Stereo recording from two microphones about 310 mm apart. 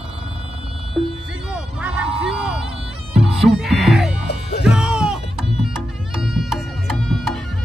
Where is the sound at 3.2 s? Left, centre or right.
Centre.